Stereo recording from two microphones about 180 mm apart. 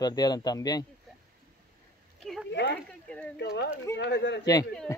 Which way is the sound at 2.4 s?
75° left (ahead or behind).